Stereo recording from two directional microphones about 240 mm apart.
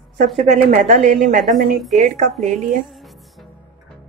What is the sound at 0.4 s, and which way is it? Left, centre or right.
A woman's voice, right.